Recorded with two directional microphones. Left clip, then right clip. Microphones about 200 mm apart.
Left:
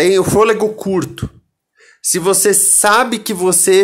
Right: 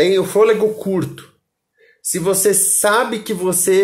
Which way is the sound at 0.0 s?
20° left (ahead or behind).